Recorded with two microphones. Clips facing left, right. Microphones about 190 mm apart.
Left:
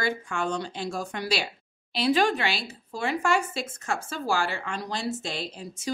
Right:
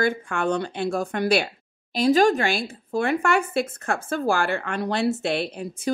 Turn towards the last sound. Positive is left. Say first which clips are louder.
# right 7 dB
turn(degrees=-60)  # may be behind; listen again after turning